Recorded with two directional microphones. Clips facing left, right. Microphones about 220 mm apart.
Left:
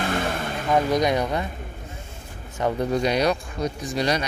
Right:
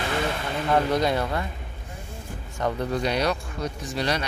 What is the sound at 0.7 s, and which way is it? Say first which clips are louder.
Speech: left 2 dB; 15° left (ahead or behind).